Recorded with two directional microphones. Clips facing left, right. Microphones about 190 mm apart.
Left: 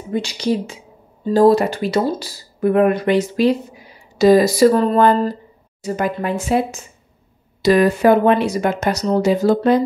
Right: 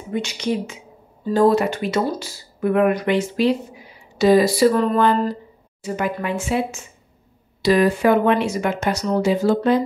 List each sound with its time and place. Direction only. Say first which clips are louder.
0.1 s speech: left 3 dB; 35° left (ahead or behind)